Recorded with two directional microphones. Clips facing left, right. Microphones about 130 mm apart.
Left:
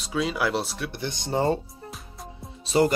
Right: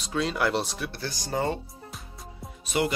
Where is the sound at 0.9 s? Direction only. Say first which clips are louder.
Left 4 dB; 20° left (ahead or behind).